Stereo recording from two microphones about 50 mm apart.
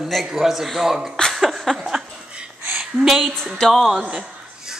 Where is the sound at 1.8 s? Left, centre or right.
Centre.